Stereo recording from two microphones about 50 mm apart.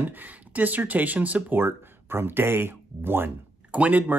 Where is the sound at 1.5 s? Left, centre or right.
Right.